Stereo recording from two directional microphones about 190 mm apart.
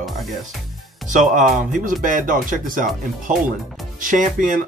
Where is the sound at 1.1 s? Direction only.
40° right (ahead or behind).